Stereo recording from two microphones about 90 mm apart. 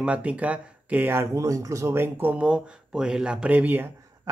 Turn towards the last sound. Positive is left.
turn(degrees=-20)  # may be behind; listen again after turning